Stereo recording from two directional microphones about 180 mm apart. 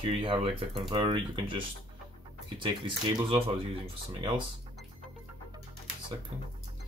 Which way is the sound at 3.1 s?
30° right (ahead or behind).